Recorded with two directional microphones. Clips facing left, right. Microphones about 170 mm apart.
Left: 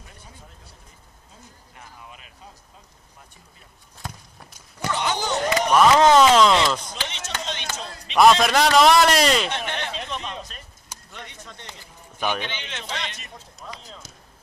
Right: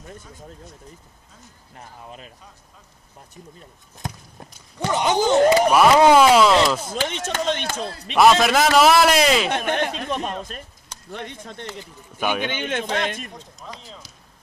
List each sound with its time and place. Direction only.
2.0 s speech: 35° right (ahead or behind)
5.1 s speech: 50° right (ahead or behind)
5.7 s a sound: 10° right (ahead or behind)
6.9 s speech: 50° right (ahead or behind)
8.1 s a man's voice: 5° right (ahead or behind)
9.5 s a sound: 50° right (ahead or behind)
11.1 s speech: 55° right (ahead or behind)
12.2 s a man's voice: 10° right (ahead or behind)
12.4 s speech: 50° right (ahead or behind)
13.6 s a man's voice: centre (ahead or behind)